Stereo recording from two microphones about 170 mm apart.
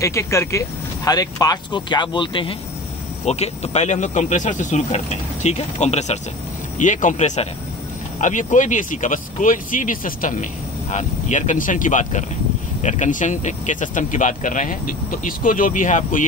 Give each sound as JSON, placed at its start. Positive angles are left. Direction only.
{"t": 0.0, "sound": "speech", "side_deg": 15}
{"t": 3.3, "sound": "speech", "side_deg": 40}